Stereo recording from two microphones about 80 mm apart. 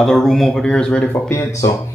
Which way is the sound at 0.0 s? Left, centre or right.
Centre.